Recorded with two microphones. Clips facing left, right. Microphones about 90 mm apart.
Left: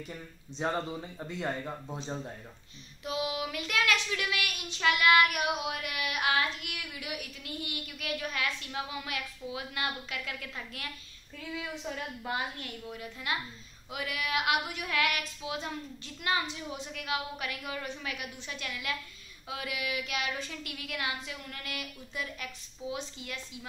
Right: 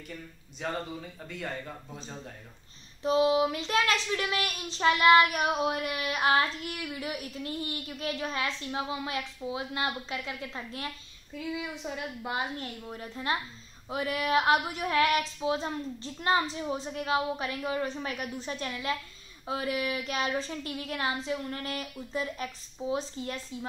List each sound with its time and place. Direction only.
0.6 s speech: 25° left (ahead or behind)
3.0 s a child's voice: 30° right (ahead or behind)
11.3 s a woman's voice: 15° right (ahead or behind)
12.5 s a child's voice: 35° right (ahead or behind)